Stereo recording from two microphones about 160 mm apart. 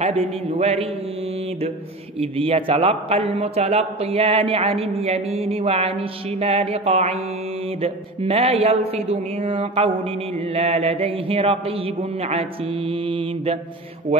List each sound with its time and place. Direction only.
0.0 s speech: 40° right (ahead or behind)
2.1 s speech: 35° right (ahead or behind)